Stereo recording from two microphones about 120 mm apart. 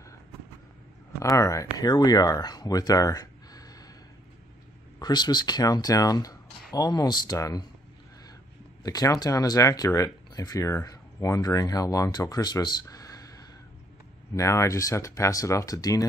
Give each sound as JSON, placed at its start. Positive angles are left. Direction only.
{"t": 1.2, "sound": "speech", "side_deg": 25}
{"t": 4.9, "sound": "speech", "side_deg": 35}
{"t": 8.8, "sound": "speech", "side_deg": 30}